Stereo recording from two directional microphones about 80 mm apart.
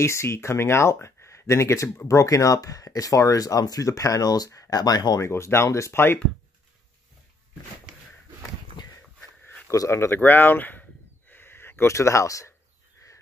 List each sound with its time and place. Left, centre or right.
0.0 s speech: left
5.2 s speech: left
9.7 s a sound: left